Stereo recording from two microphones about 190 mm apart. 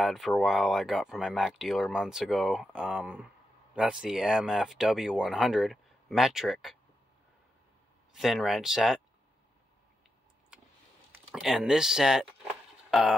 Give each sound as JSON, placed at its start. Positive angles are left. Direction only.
{"t": 0.0, "sound": "speech", "side_deg": 0}
{"t": 8.1, "sound": "speech", "side_deg": 0}
{"t": 11.1, "sound": "speech", "side_deg": -5}